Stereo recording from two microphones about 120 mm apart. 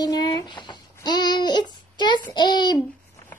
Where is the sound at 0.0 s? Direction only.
35° left (ahead or behind).